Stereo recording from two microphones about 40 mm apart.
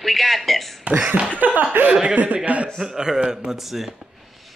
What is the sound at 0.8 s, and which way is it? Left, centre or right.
Speech, right.